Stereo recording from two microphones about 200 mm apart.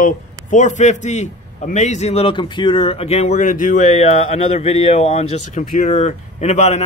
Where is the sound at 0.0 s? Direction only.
40° left (ahead or behind).